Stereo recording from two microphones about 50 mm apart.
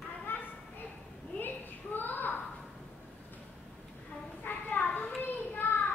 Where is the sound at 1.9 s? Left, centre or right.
Left.